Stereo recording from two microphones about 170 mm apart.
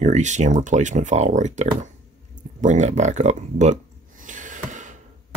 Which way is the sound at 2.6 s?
45° right (ahead or behind).